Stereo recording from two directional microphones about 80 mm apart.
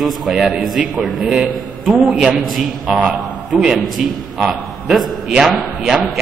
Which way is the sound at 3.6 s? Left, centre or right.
Centre.